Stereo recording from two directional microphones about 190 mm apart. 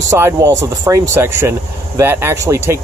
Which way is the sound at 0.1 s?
15° right (ahead or behind).